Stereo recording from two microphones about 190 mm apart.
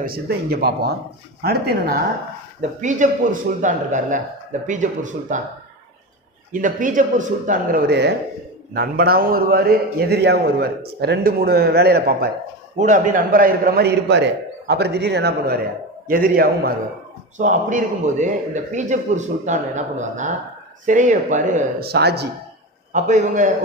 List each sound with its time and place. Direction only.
0.0 s a man's voice: 55° right (ahead or behind)
6.5 s a man's voice: 45° right (ahead or behind)
12.7 s a man's voice: 40° right (ahead or behind)
21.8 s a man's voice: 60° right (ahead or behind)
22.9 s a man's voice: 40° right (ahead or behind)